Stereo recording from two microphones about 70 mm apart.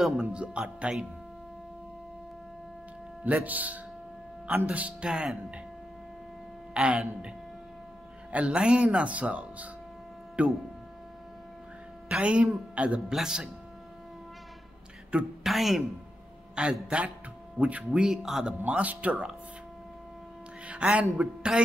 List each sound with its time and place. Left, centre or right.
0.0 s speech: centre
3.3 s speech: right
6.7 s speech: centre
8.3 s speech: centre
12.1 s speech: centre
15.4 s speech: centre
16.6 s speech: centre
18.7 s speech: centre
20.6 s speech: centre